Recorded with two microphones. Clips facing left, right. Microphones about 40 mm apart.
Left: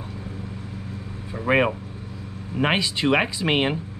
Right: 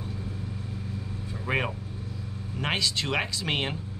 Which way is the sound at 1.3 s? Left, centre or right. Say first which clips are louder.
Left 9 dB; left.